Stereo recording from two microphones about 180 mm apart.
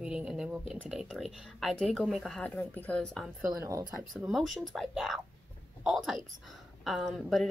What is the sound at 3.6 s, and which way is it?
Speech, 20° right (ahead or behind).